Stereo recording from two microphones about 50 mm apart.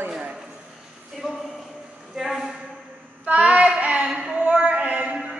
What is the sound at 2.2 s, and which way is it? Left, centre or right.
Speech, centre.